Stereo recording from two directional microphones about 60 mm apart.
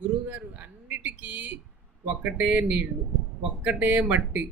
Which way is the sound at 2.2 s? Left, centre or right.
Right.